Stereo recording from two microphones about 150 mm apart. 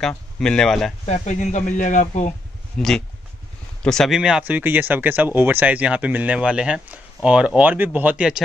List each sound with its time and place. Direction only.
0.4 s speech: 5° left (ahead or behind)
1.0 s speech: 50° left (ahead or behind)
2.8 s speech: centre (ahead or behind)